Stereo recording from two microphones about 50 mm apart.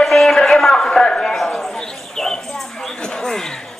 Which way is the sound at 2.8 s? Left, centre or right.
Centre.